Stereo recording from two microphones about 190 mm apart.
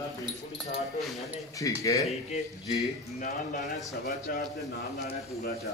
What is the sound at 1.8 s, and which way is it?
Speech, 20° left (ahead or behind).